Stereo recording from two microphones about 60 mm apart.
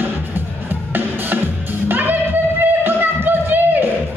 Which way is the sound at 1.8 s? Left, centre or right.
Right.